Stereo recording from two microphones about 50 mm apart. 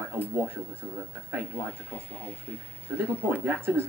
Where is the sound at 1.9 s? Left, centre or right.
Left.